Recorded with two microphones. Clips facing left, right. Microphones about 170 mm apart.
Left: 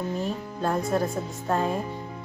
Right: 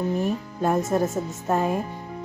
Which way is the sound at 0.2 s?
15° right (ahead or behind).